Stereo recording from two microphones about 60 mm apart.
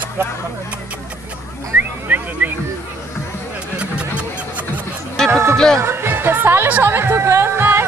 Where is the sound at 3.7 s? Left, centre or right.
Centre.